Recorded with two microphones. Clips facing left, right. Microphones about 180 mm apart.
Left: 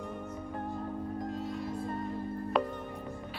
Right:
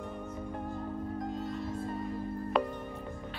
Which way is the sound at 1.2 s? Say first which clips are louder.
Even; centre (ahead or behind).